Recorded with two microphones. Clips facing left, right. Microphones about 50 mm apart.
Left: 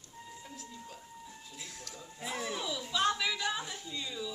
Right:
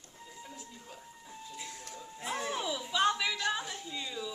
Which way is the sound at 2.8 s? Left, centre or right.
Centre.